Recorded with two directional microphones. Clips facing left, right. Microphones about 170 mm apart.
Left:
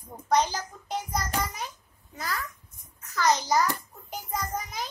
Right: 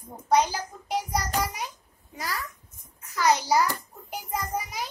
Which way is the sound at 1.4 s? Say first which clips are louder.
Right 2 dB; 15° right (ahead or behind).